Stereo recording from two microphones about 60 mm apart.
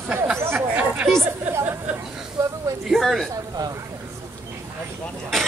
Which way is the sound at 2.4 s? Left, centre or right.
Right.